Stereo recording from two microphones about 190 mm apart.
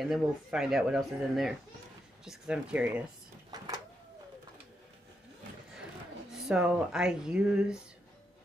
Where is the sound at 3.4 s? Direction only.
20° right (ahead or behind).